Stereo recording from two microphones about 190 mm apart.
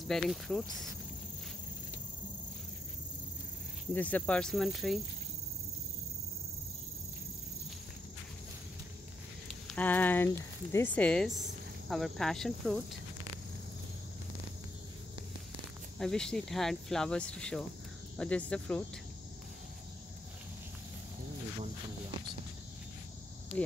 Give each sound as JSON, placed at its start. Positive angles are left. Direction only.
{"t": 0.1, "sound": "speech", "side_deg": 0}
{"t": 3.9, "sound": "speech", "side_deg": 10}
{"t": 9.8, "sound": "speech", "side_deg": 10}
{"t": 16.0, "sound": "speech", "side_deg": 5}
{"t": 23.5, "sound": "speech", "side_deg": -30}